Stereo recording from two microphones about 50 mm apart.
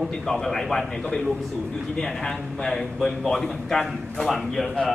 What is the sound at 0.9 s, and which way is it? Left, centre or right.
A man's voice, centre.